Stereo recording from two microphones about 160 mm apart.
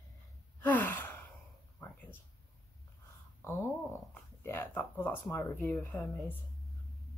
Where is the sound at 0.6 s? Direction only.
10° left (ahead or behind).